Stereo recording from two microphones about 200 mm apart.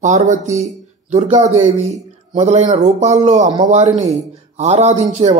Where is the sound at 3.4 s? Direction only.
20° right (ahead or behind).